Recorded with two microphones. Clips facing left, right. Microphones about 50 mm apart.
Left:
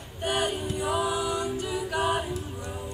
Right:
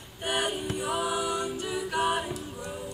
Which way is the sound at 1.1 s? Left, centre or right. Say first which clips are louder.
Left 1 dB; centre.